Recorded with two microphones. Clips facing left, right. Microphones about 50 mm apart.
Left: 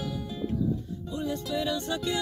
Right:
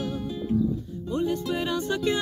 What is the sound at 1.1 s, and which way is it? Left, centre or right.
Music, right.